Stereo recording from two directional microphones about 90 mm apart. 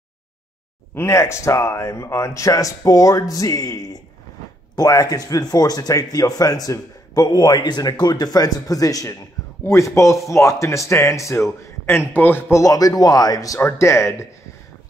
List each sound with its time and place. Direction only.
0.9 s a man's voice: 30° left (ahead or behind)
12.6 s speech: 40° left (ahead or behind)
13.6 s a man's voice: 30° left (ahead or behind)